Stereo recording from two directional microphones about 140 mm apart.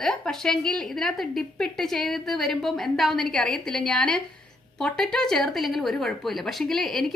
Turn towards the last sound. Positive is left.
turn(degrees=0)  # may be behind; listen again after turning